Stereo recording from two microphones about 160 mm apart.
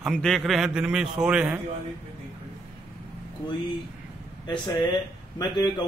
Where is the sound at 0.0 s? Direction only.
5° left (ahead or behind).